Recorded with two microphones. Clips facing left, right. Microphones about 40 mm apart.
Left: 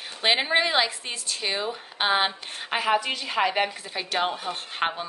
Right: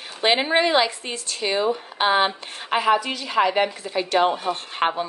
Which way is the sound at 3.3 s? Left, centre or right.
Centre.